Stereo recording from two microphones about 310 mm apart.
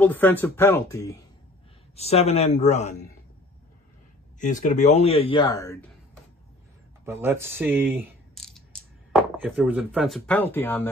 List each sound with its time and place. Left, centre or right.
0.0 s a man's voice: centre; by 2.9 s left
4.4 s a man's voice: left
7.1 s speech: centre